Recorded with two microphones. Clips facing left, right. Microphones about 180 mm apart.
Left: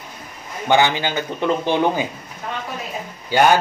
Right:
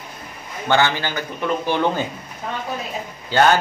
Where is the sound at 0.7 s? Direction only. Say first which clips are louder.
Left 2 dB; 15° left (ahead or behind).